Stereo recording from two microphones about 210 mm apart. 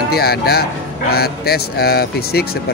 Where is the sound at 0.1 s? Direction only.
50° left (ahead or behind).